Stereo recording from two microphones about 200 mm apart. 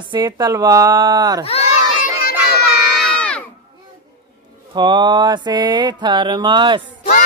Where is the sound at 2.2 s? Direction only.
55° left (ahead or behind).